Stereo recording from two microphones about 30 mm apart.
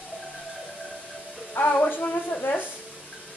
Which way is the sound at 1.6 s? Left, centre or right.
Left.